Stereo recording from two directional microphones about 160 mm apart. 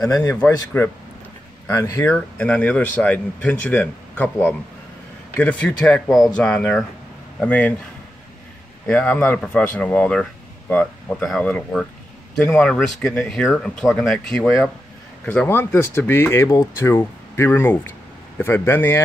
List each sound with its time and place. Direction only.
0.0 s speech: 20° left (ahead or behind)
0.7 s speech: 10° left (ahead or behind)
8.8 s speech: 5° left (ahead or behind)